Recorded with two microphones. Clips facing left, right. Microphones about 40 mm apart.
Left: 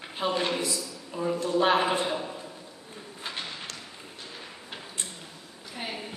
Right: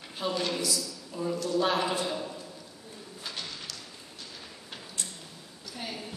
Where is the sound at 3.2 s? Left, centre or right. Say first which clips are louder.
Left 3 dB; left.